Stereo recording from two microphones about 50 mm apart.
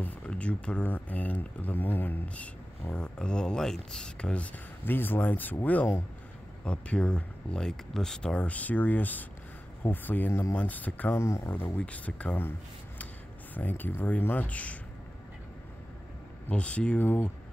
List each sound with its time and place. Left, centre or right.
0.3 s speech: left
0.8 s speech: left
2.2 s speech: left; by 4.1 s centre
4.2 s speech: left
4.8 s speech: left
6.6 s speech: left
7.6 s speech: centre
8.2 s speech: left
11.1 s speech: left
11.5 s speech: left
13.6 s speech: left
16.4 s speech: left